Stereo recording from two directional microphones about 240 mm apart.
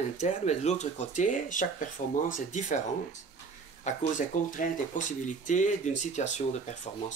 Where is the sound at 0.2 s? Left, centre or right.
Left.